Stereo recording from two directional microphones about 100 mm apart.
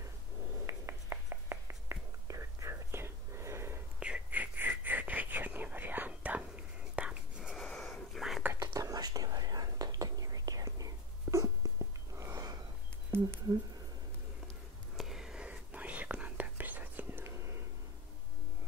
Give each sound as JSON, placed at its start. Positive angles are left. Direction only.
{"t": 0.7, "sound": "whispering", "side_deg": -30}
{"t": 4.0, "sound": "whispering", "side_deg": -15}
{"t": 7.5, "sound": "whispering", "side_deg": 5}
{"t": 8.7, "sound": "whispering", "side_deg": -40}
{"t": 12.2, "sound": "a sound", "side_deg": -35}
{"t": 15.0, "sound": "whispering", "side_deg": -5}